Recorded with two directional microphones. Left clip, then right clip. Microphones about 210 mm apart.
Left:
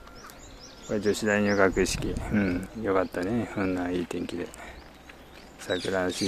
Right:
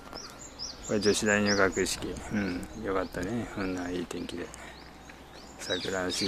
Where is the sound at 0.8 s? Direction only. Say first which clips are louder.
Even; 5° left (ahead or behind); by 4.4 s 25° left (ahead or behind).